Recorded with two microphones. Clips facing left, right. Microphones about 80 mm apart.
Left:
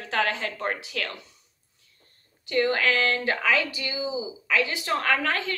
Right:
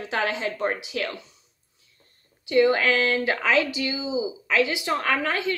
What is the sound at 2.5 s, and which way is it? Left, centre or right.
A woman's voice, centre.